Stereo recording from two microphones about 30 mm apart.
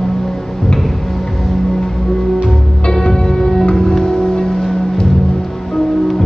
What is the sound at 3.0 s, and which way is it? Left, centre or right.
Music, left.